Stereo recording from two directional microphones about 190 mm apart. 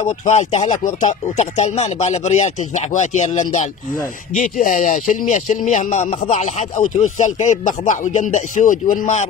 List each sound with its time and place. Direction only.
0.2 s speech: 35° left (ahead or behind)